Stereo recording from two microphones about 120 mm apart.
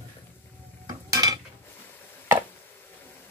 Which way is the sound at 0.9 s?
30° right (ahead or behind).